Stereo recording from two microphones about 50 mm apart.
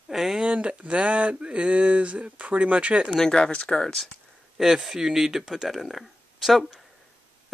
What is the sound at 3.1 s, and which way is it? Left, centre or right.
Speech, centre.